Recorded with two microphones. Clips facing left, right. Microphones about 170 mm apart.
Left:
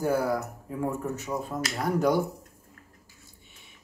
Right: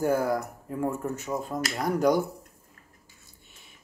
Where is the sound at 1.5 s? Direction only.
15° right (ahead or behind).